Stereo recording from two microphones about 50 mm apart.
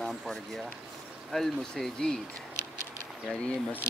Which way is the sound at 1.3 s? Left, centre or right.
Centre.